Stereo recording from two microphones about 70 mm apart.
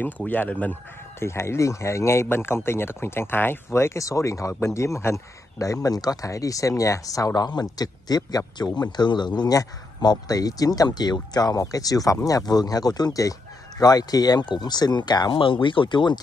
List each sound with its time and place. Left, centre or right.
0.2 s speech: left
1.2 s a man's voice: left
10.0 s speech: left